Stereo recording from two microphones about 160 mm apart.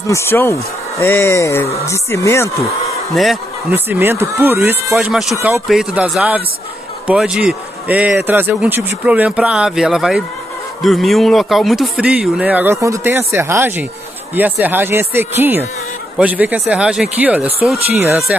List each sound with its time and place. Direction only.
0.0 s speech: 15° left (ahead or behind)
3.7 s speech: 15° right (ahead or behind)
4.9 s speech: centre (ahead or behind)